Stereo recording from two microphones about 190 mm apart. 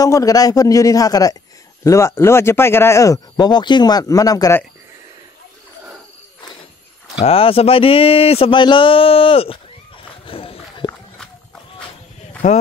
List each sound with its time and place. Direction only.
0.0 s speech: 20° left (ahead or behind)
7.2 s speech: 30° left (ahead or behind)
10.2 s a sound: 30° left (ahead or behind)
12.4 s speech: 40° left (ahead or behind)